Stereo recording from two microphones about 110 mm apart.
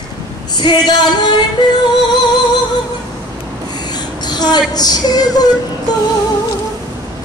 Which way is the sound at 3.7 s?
40° left (ahead or behind).